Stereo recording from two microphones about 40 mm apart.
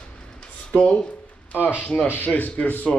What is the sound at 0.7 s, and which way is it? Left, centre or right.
Speech, left.